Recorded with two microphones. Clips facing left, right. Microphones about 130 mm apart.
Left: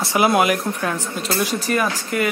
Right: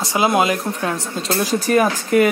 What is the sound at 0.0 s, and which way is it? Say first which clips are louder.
Speech: even; 20° right (ahead or behind).